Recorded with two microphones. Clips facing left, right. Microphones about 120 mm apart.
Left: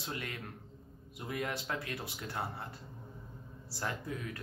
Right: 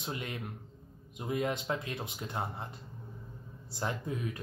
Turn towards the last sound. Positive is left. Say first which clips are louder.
# right 3 dB
turn(degrees=-20)  # may be behind; listen again after turning